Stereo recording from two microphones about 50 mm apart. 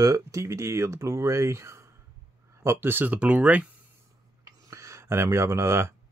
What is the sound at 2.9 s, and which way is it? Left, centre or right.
Speech, right.